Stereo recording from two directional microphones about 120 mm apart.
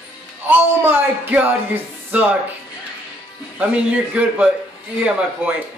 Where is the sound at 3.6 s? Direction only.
10° right (ahead or behind).